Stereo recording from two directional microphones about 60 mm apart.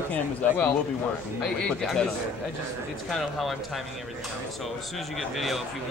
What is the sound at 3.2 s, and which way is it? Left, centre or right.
Speech, centre.